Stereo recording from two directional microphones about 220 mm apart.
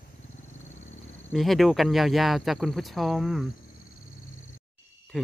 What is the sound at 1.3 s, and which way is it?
Speech, centre (ahead or behind).